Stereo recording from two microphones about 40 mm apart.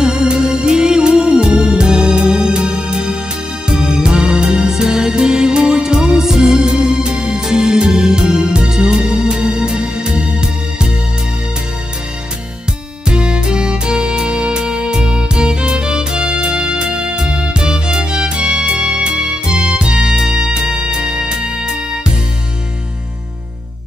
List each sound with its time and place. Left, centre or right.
0.0 s music: centre
13.0 s music: right